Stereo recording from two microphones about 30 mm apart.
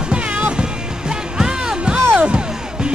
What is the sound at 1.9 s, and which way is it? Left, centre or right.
Music, right.